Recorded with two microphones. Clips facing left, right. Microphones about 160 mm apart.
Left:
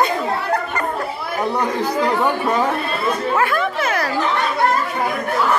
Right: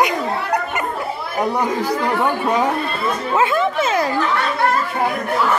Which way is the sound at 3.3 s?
20° right (ahead or behind).